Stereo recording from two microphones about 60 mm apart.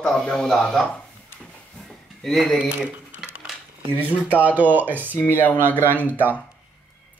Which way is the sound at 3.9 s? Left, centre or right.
Right.